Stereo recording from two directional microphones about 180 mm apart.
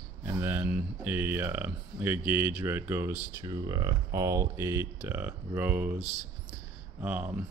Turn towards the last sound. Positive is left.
turn(degrees=-10)  # may be behind; listen again after turning